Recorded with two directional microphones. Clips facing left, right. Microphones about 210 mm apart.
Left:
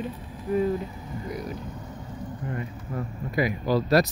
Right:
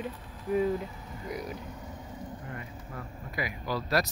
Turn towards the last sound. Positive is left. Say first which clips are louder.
# left 8 dB
turn(degrees=25)  # may be behind; listen again after turning